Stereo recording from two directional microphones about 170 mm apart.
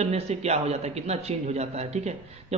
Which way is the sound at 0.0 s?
40° right (ahead or behind).